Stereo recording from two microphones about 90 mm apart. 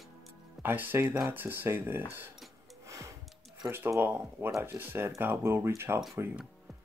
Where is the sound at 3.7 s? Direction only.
25° right (ahead or behind).